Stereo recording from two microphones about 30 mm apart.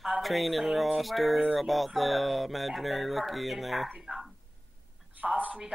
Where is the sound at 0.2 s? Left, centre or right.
Centre.